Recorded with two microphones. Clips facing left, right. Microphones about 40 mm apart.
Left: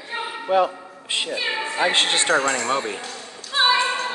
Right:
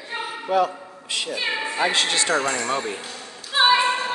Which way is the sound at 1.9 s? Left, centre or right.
Left.